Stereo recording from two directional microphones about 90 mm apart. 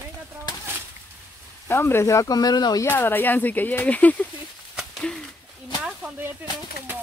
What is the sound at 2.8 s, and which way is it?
Speech, 25° left (ahead or behind).